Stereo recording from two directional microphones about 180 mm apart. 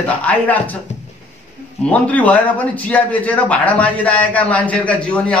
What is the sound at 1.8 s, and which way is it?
A man's voice, 5° left (ahead or behind).